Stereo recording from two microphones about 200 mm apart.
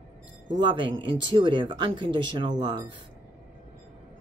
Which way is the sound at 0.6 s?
25° right (ahead or behind).